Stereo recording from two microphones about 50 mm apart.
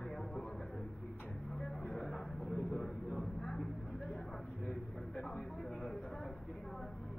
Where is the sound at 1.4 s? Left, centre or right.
Centre.